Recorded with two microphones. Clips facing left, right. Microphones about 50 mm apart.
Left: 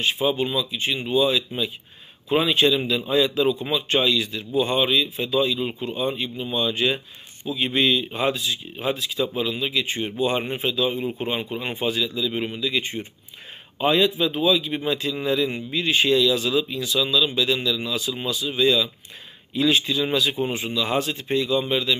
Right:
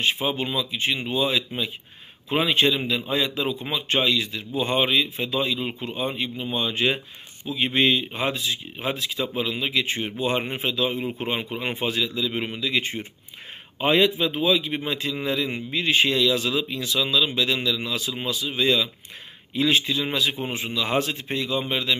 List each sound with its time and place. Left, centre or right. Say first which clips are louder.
0.0 s a man's voice: left 2 dB; right